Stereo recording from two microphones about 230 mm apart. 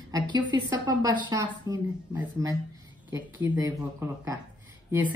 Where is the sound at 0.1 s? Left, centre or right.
Centre.